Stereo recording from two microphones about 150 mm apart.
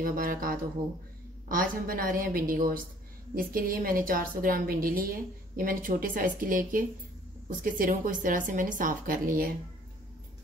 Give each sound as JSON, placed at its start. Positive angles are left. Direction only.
{"t": 0.0, "sound": "a woman's voice", "side_deg": -70}